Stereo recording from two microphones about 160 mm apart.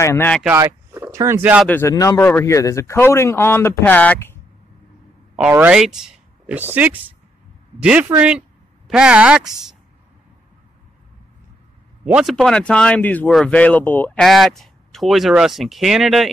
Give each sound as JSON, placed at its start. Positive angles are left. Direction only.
{"t": 0.0, "sound": "speech", "side_deg": 15}
{"t": 0.6, "sound": "speech", "side_deg": -15}
{"t": 1.7, "sound": "speech", "side_deg": 15}
{"t": 5.4, "sound": "speech", "side_deg": -10}
{"t": 12.0, "sound": "speech", "side_deg": -5}